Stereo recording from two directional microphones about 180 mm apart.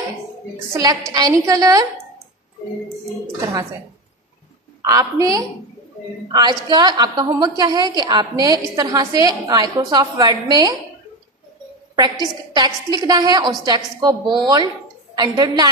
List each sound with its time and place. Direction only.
1.1 s a woman's voice: 20° right (ahead or behind)
4.8 s a woman's voice: 20° right (ahead or behind)
12.5 s a woman's voice: 25° right (ahead or behind)